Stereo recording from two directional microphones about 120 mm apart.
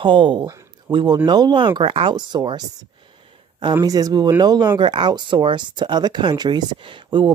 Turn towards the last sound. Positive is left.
turn(degrees=-40)  # may be behind; listen again after turning